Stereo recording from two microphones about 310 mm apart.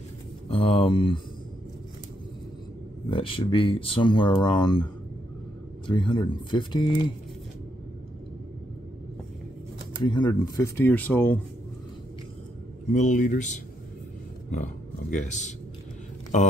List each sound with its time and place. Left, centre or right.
0.5 s speech: centre
3.1 s speech: centre
5.9 s speech: centre
10.0 s speech: centre
12.9 s speech: left